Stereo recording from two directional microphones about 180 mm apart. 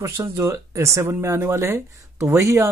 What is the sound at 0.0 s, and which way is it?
Speech, 15° right (ahead or behind).